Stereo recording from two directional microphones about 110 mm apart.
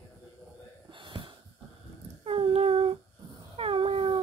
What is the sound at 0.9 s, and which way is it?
Gasp, 50° right (ahead or behind).